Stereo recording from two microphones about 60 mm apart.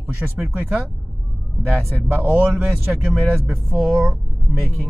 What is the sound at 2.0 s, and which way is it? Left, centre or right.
Speech, right.